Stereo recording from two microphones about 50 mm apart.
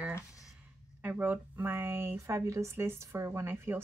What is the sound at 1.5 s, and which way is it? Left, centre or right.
Speech, right.